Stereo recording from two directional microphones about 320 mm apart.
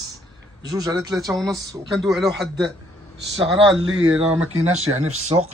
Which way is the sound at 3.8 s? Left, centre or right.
Right.